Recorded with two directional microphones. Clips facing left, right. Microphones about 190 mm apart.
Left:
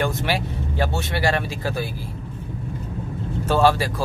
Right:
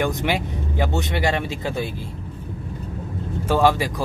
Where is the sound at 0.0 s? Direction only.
15° right (ahead or behind).